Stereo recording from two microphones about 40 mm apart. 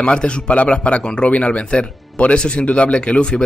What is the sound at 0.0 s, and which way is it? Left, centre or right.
A man's voice, left.